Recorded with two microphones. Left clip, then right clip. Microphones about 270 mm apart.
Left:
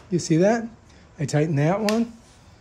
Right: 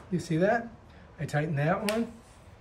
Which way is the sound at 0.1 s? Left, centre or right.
Left.